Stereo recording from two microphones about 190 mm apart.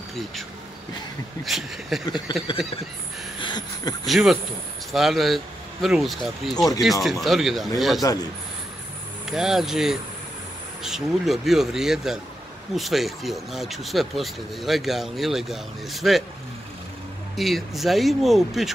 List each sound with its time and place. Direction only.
1.4 s speech: centre (ahead or behind)
2.3 s a man's voice: 25° left (ahead or behind)
3.3 s a sound: 25° left (ahead or behind)
4.0 s speech: centre (ahead or behind)
8.0 s a man's voice: 20° left (ahead or behind)
9.3 s speech: centre (ahead or behind)
17.4 s speech: centre (ahead or behind)